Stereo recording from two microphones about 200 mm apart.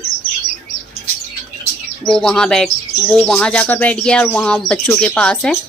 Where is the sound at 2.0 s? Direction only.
5° left (ahead or behind).